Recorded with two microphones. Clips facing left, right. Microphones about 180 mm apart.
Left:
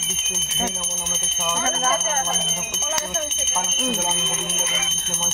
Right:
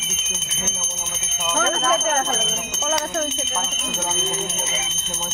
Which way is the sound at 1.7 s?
60° right (ahead or behind).